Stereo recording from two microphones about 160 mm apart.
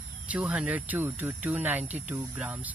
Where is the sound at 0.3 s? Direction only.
10° right (ahead or behind).